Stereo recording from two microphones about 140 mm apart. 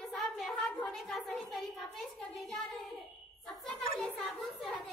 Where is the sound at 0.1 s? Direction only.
Centre (ahead or behind).